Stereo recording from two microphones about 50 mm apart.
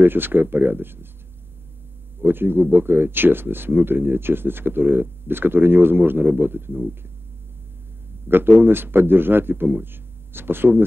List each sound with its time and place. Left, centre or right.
0.0 s speech: right
2.1 s speech: right
8.3 s speech: right